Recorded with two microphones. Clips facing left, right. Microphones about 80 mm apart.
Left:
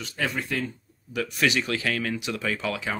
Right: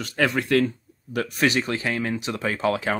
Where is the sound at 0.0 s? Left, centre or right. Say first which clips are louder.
Right 6 dB; right.